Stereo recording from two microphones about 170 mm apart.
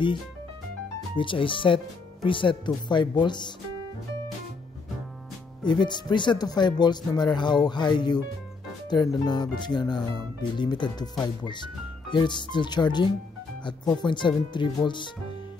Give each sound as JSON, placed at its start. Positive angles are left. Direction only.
{"t": 1.1, "sound": "speech", "side_deg": 30}
{"t": 5.7, "sound": "speech", "side_deg": 25}